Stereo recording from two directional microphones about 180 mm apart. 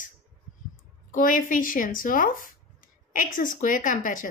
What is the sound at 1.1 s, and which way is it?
Speech, 50° left (ahead or behind).